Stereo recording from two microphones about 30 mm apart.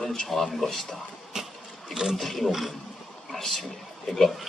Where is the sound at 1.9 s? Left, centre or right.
Centre.